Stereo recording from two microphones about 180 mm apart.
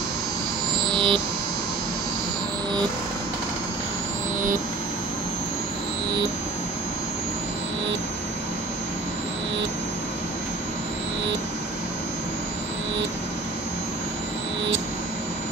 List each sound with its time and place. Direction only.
0.8 s synthesizer: 25° right (ahead or behind)